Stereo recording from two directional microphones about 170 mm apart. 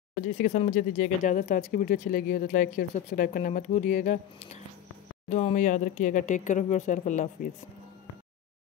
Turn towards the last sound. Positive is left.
turn(degrees=50)  # may be behind; listen again after turning